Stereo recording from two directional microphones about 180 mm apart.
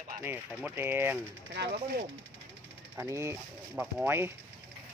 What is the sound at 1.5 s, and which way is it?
Speech, 60° right (ahead or behind).